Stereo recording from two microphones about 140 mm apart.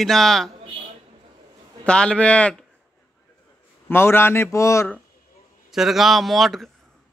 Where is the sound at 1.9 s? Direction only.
5° left (ahead or behind).